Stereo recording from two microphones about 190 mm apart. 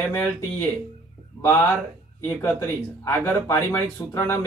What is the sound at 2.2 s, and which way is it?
Speech, 15° left (ahead or behind).